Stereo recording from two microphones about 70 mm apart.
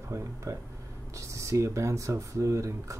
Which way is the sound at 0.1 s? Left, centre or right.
Right.